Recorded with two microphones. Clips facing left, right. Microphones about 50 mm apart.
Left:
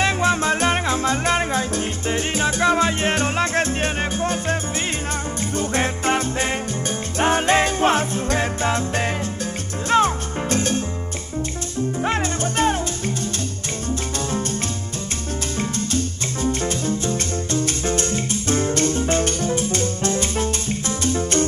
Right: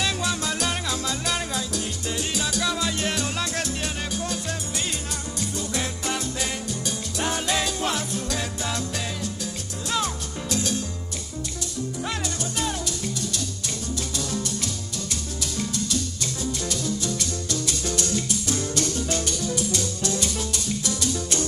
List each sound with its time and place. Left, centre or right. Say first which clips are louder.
0.0 s music: left 8 dB; left
5.6 s music: left 9 dB; left
12.0 s music: left 9 dB; left
15.5 s music: left 3 dB; left